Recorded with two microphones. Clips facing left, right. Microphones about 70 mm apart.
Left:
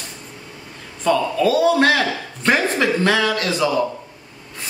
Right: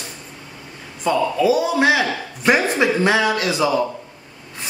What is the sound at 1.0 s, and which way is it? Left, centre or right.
Speech, centre.